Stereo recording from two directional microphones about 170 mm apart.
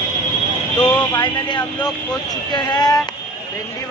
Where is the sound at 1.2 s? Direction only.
25° left (ahead or behind).